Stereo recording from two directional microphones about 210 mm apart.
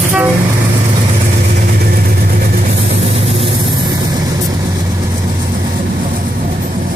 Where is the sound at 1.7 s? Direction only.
45° right (ahead or behind); by 4.2 s 20° right (ahead or behind).